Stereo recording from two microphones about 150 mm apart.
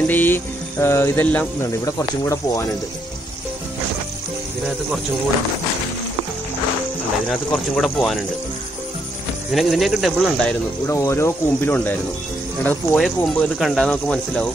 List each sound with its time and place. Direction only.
0.0 s speech: 10° left (ahead or behind)
1.9 s speech: 20° left (ahead or behind)
7.2 s speech: 5° left (ahead or behind)
9.5 s speech: centre (ahead or behind)
10.9 s speech: 20° left (ahead or behind)
12.6 s speech: 5° left (ahead or behind)